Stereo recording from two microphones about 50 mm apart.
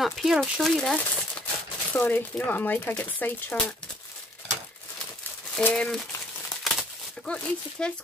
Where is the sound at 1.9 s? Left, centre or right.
Left.